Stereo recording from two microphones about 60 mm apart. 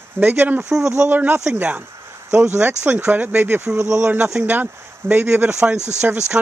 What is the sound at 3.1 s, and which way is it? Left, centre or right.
Speech, right.